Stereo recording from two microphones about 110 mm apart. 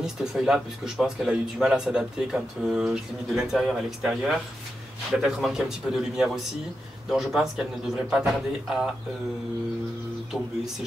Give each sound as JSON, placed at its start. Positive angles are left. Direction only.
{"t": 0.0, "sound": "speech", "side_deg": -5}